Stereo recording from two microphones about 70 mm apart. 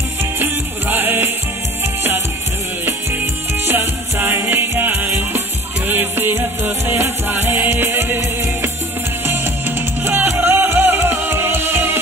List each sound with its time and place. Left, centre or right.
0.4 s music: right
3.6 s music: right
9.2 s music: right